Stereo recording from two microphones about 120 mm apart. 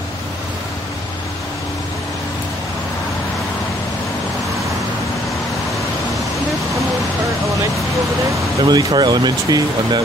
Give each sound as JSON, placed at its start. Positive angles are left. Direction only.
{"t": 8.6, "sound": "speech", "side_deg": -35}